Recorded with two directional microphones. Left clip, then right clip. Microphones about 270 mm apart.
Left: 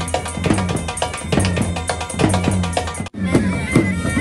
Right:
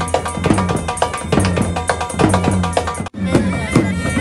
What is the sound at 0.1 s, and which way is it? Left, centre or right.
Music, centre.